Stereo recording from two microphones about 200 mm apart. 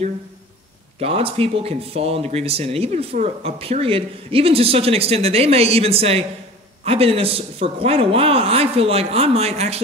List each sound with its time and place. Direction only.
0.9 s speech: 30° right (ahead or behind)